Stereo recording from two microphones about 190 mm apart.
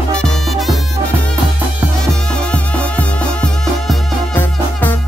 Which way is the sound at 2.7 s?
5° left (ahead or behind).